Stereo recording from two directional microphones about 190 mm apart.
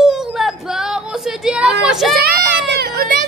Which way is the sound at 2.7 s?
55° right (ahead or behind).